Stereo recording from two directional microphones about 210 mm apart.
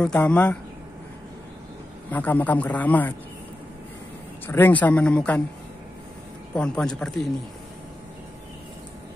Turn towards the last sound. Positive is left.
turn(degrees=0)  # may be behind; listen again after turning